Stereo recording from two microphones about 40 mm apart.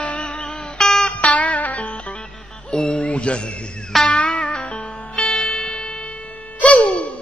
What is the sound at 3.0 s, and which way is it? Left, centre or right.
Music, left.